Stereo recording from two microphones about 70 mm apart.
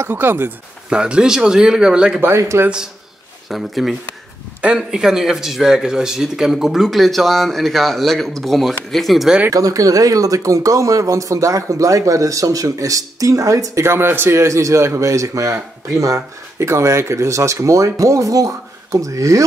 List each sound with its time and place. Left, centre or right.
0.1 s a man's voice: right
0.8 s speech: centre
2.2 s speech: right
3.4 s speech: centre
9.5 s speech: right
13.8 s a man's voice: right